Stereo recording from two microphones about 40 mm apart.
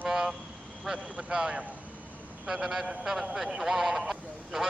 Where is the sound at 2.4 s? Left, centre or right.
Centre.